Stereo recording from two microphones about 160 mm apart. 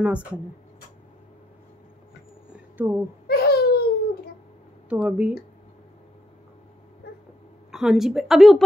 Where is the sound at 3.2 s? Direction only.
75° left (ahead or behind).